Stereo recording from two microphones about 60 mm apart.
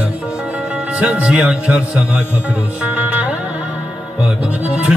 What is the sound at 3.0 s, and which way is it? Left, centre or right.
Music, right.